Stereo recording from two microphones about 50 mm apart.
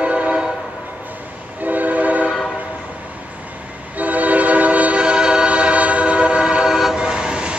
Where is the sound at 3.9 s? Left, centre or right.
Right.